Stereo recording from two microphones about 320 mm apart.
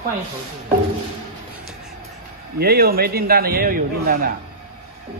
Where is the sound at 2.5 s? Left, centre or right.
Right.